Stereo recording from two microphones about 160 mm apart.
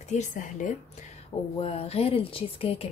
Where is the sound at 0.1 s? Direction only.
50° left (ahead or behind).